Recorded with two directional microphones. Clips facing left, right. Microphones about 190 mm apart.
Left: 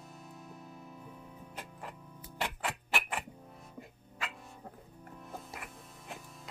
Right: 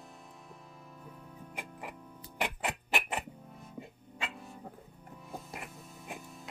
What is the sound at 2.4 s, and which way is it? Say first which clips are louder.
Music: right 2 dB; 20° right (ahead or behind).